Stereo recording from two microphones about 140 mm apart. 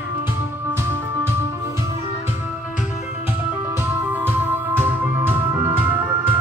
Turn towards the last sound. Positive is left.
turn(degrees=-10)  # may be behind; listen again after turning